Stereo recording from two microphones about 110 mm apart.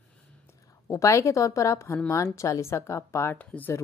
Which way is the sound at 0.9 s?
25° left (ahead or behind).